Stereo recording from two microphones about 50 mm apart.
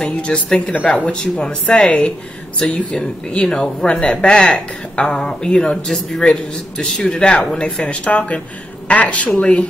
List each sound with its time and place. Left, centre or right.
0.0 s speech: centre
3.0 s speech: centre